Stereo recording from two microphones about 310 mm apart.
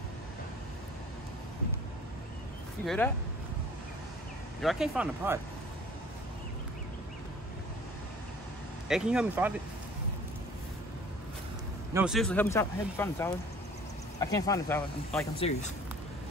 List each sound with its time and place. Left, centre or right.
2.8 s speech: centre
4.6 s speech: centre
8.8 s speech: centre
11.9 s speech: centre